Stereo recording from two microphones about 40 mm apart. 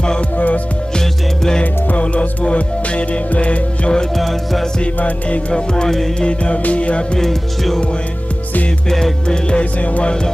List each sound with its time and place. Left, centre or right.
0.9 s music: centre
1.6 s music: left
4.2 s music: centre
5.5 s music: centre
6.2 s music: left
7.2 s music: centre
9.3 s music: left